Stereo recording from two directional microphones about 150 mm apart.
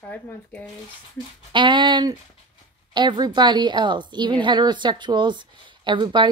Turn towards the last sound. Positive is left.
turn(degrees=-30)  # may be behind; listen again after turning